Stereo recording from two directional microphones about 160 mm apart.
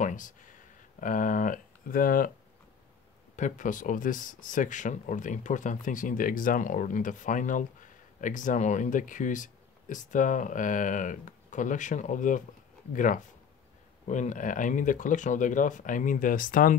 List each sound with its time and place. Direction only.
0.0 s a sound: 55° left (ahead or behind)
1.0 s speech: 55° left (ahead or behind)
3.3 s speech: 50° left (ahead or behind)